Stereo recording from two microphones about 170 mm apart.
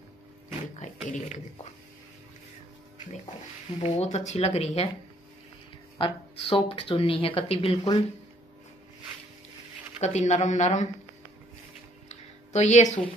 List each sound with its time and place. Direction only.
0.7 s speech: 45° left (ahead or behind)
3.8 s speech: 40° left (ahead or behind)
5.9 s speech: 30° left (ahead or behind)
9.9 s speech: 40° left (ahead or behind)
12.1 s a sound: 40° left (ahead or behind)